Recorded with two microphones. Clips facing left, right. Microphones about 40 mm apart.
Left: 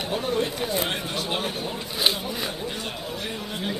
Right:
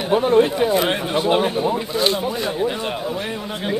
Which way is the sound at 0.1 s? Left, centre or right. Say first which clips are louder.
Right 12 dB; right.